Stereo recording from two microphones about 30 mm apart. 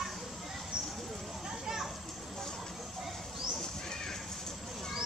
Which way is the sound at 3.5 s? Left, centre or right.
Centre.